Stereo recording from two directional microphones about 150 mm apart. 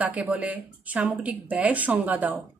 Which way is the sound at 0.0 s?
10° right (ahead or behind).